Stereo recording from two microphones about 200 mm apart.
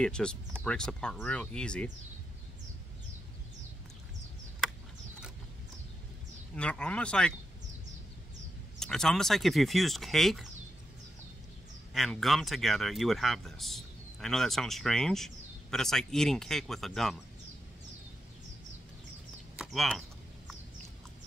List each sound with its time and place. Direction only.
0.0 s speech: 5° left (ahead or behind)
6.5 s speech: 5° left (ahead or behind)
8.7 s speech: 5° left (ahead or behind)
11.9 s speech: centre (ahead or behind)
19.5 s a sound: centre (ahead or behind)